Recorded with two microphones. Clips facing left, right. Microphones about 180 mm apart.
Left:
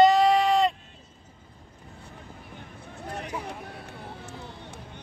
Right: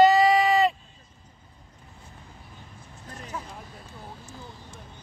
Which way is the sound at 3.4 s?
65° left (ahead or behind).